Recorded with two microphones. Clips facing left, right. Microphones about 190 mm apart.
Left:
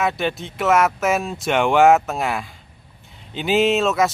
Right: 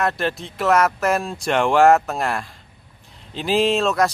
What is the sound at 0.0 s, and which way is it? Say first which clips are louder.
Speech: even; centre (ahead or behind).